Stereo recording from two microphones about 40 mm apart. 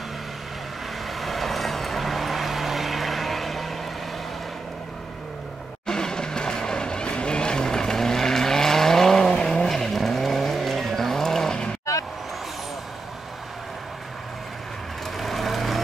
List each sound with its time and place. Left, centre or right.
1.0 s vehicle: centre
5.9 s vehicle: centre
15.1 s vehicle: centre